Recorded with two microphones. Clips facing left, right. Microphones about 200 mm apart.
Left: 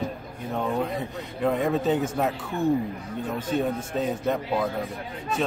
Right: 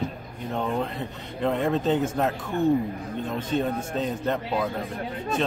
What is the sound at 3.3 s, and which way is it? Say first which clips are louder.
Speech: even; 10° left (ahead or behind).